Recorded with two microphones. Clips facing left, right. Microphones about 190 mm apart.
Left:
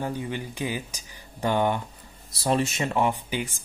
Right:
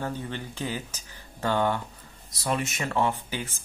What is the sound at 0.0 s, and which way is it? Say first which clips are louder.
Speech: left 3 dB; 15° left (ahead or behind).